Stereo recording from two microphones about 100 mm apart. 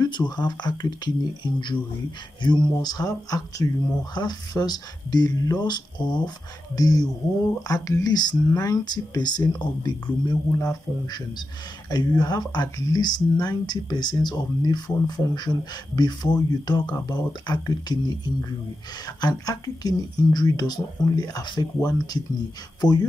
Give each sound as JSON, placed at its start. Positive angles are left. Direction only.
{"t": 0.0, "sound": "speech", "side_deg": 45}